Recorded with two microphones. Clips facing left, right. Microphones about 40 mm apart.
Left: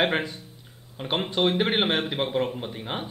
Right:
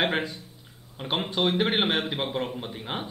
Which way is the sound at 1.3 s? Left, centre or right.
Left.